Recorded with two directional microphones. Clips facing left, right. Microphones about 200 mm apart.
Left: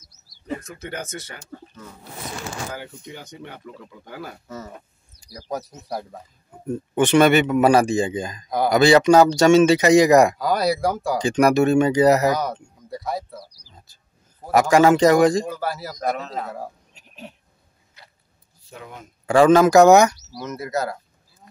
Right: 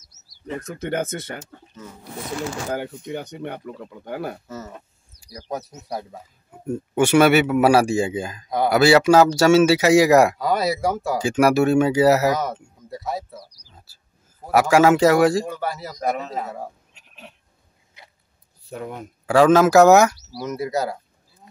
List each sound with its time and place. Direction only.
0.7 s speech: 50° right (ahead or behind)
2.7 s speech: 55° right (ahead or behind)
4.5 s speech: centre (ahead or behind)
13.7 s whispering: 5° right (ahead or behind)
14.5 s a man's voice: 5° right (ahead or behind)
16.9 s a sound: 40° left (ahead or behind)
18.7 s speech: 50° right (ahead or behind)
19.2 s a man's voice: 5° right (ahead or behind)